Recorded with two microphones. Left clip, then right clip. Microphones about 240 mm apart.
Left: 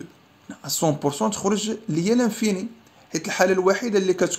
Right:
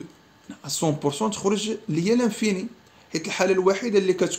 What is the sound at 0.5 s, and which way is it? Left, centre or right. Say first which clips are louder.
Speech: left 3 dB; centre.